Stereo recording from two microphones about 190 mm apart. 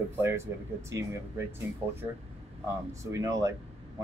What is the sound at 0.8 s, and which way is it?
Speech, 15° right (ahead or behind).